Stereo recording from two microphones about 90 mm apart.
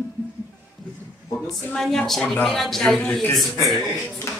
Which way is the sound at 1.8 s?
5° left (ahead or behind).